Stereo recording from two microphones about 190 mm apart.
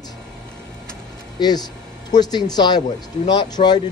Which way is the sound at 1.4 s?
20° left (ahead or behind).